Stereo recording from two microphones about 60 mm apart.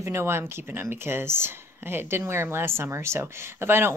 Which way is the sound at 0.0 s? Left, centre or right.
Right.